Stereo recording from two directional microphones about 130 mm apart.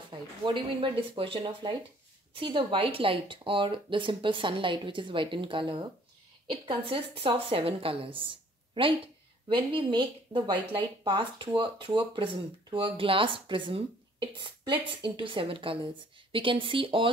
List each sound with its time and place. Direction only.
0.1 s a woman's voice: 40° right (ahead or behind)